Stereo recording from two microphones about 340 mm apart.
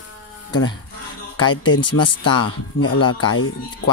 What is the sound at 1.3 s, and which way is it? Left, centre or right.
Speech, left.